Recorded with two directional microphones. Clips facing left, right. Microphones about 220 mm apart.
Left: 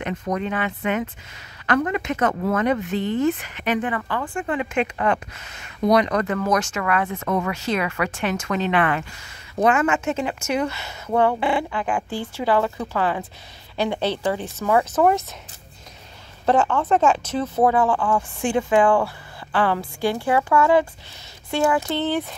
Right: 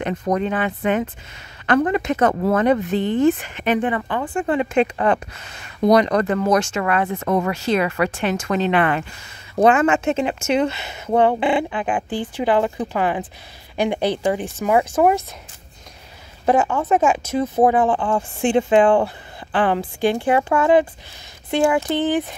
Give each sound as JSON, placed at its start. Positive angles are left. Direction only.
{"t": 0.0, "sound": "speech", "side_deg": -35}
{"t": 16.4, "sound": "speech", "side_deg": -10}